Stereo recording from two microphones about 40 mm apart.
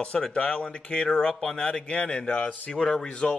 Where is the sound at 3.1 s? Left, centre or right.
Left.